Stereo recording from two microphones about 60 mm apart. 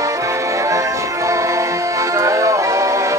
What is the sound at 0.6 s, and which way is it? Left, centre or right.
Music, right.